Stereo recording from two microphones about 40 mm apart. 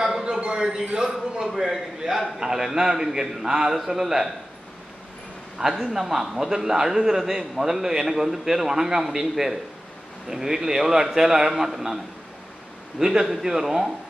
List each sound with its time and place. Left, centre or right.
0.0 s a sound: centre
0.6 s a man's voice: centre
1.1 s a man's voice: centre
5.8 s a man's voice: centre
10.3 s a man's voice: centre
13.0 s a man's voice: centre